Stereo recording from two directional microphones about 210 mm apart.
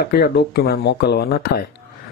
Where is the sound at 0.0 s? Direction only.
50° left (ahead or behind).